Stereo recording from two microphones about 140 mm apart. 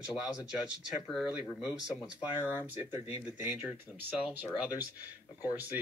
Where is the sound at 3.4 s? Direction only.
5° right (ahead or behind).